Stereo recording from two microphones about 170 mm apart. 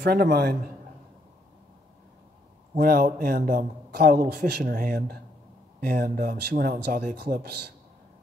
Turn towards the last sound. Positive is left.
turn(degrees=-65)  # may be behind; listen again after turning